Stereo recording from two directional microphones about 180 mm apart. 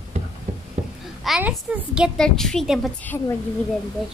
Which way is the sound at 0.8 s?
40° right (ahead or behind).